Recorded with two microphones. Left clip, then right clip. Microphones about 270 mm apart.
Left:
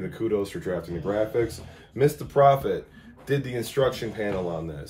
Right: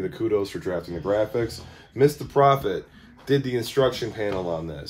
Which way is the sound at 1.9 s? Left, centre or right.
Right.